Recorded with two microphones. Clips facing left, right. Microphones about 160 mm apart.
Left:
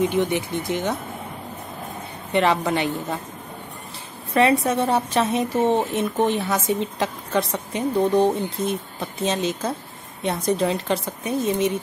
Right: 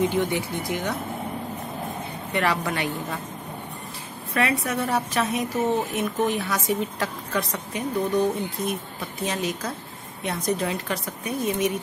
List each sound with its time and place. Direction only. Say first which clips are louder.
0.1 s a woman's voice: left 3 dB; 20° left (ahead or behind)
2.3 s a woman's voice: left 5 dB; 25° left (ahead or behind)
4.3 s a woman's voice: left 6 dB; 25° left (ahead or behind)